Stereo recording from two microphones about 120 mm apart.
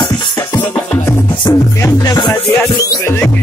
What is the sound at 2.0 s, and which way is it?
Music, 35° left (ahead or behind).